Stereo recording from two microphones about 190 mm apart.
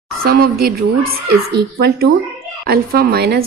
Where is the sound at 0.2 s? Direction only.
50° right (ahead or behind).